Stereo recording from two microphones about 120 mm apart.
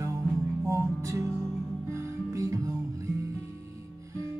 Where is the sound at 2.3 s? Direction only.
30° right (ahead or behind).